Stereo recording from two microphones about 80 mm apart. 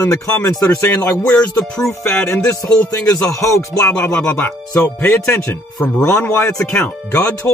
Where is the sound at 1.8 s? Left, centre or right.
Left.